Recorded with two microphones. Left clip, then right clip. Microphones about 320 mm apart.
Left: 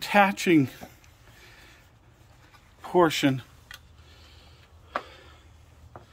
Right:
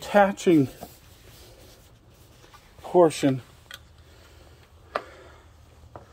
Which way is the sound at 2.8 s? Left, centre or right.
Left.